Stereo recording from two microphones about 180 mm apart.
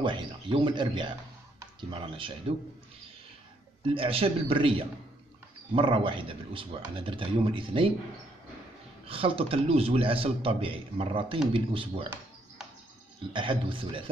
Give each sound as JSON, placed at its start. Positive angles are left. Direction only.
{"t": 0.0, "sound": "speech", "side_deg": -25}
{"t": 3.8, "sound": "a man's voice", "side_deg": -30}
{"t": 9.0, "sound": "a man's voice", "side_deg": -30}
{"t": 13.3, "sound": "speech", "side_deg": -30}